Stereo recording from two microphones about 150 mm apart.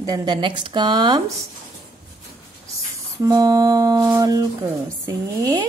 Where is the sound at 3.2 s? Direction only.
25° right (ahead or behind).